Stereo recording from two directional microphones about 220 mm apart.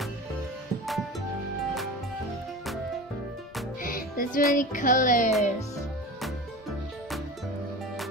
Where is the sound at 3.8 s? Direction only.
40° left (ahead or behind).